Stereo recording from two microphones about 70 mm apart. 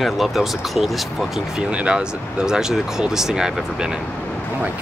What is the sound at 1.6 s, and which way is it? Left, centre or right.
Speech, centre.